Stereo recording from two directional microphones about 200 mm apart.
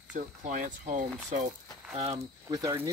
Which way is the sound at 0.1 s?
40° right (ahead or behind).